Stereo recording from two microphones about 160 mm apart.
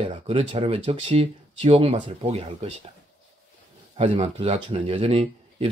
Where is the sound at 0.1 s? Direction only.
30° right (ahead or behind).